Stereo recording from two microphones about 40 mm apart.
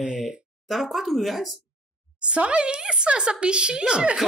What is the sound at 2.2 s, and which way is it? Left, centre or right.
A woman's voice, right.